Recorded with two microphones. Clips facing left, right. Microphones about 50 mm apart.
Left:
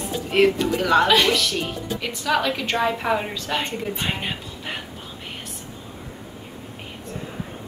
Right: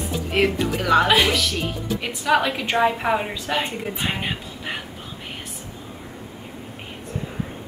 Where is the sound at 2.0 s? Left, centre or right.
Centre.